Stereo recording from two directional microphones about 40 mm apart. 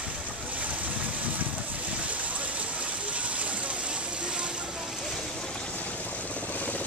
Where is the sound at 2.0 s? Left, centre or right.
Right.